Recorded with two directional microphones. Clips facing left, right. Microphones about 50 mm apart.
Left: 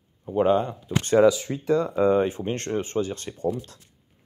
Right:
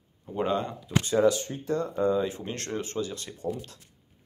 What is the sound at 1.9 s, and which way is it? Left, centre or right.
Speech, left.